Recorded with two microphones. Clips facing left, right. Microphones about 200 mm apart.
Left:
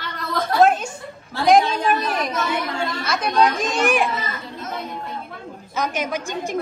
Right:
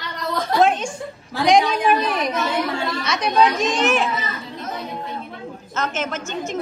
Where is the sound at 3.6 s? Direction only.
10° left (ahead or behind).